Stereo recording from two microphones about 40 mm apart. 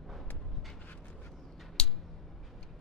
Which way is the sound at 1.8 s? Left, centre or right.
Centre.